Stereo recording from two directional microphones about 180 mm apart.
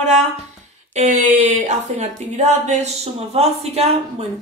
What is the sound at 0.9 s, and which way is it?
A woman's voice, 40° right (ahead or behind).